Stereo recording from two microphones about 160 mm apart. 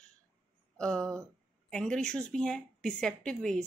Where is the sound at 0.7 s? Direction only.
5° left (ahead or behind).